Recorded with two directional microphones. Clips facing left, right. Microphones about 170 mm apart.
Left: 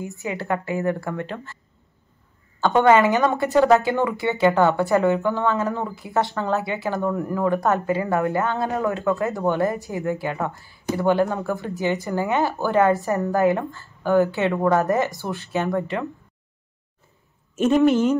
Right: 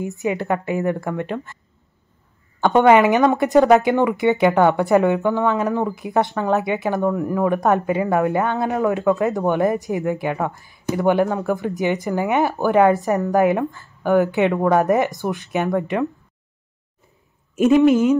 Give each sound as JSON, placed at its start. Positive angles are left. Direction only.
{"t": 0.0, "sound": "speech", "side_deg": -20}
{"t": 2.6, "sound": "speech", "side_deg": -15}
{"t": 17.6, "sound": "speech", "side_deg": 0}